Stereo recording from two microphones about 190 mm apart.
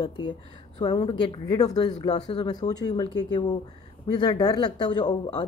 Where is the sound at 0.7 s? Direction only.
25° left (ahead or behind).